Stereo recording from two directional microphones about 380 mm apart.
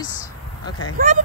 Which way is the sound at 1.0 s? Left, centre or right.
Right.